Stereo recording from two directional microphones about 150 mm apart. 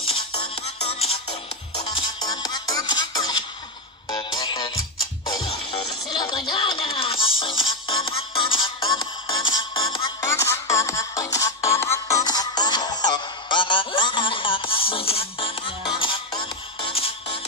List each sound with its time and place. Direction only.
0.8 s music: 40° left (ahead or behind)
1.9 s music: 30° left (ahead or behind)
10.2 s music: 20° left (ahead or behind); by 17.4 s 40° left (ahead or behind)